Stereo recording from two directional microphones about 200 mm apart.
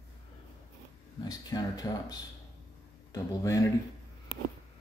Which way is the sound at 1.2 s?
20° left (ahead or behind).